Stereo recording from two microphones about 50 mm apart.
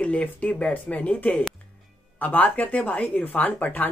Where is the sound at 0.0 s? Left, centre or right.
Left.